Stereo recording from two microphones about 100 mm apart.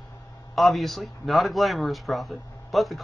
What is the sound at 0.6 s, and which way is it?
Speech, centre (ahead or behind).